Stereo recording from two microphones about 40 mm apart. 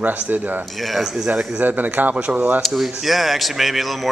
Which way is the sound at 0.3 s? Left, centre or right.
Right.